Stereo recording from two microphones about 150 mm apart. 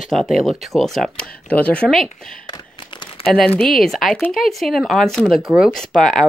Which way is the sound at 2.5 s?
35° left (ahead or behind).